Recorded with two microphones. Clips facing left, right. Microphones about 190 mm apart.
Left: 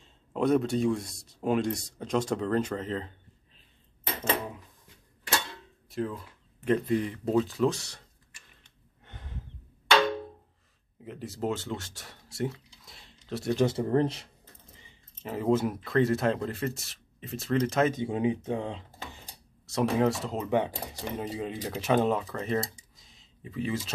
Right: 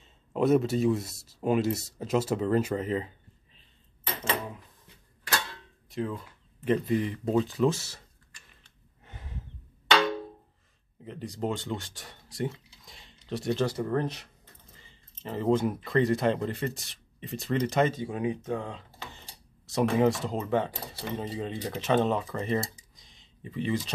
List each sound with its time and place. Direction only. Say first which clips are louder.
0.0 s speech: right 1 dB; 5° right (ahead or behind)
5.9 s speech: even; centre (ahead or behind)
8.6 s gasp: right 1 dB; 5° right (ahead or behind)
11.1 s speech: even; 5° left (ahead or behind)
13.7 s speech: left 3 dB; 25° left (ahead or behind)
14.8 s speech: left 1 dB; 15° left (ahead or behind)
17.9 s speech: left 3 dB; 25° left (ahead or behind)
19.1 s a sound: left 1 dB; centre (ahead or behind)
20.4 s speech: left 2 dB; 15° left (ahead or behind)
22.9 s a sound: even; 5° left (ahead or behind)